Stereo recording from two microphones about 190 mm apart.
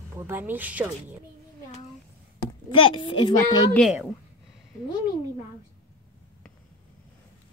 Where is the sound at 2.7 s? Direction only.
25° left (ahead or behind).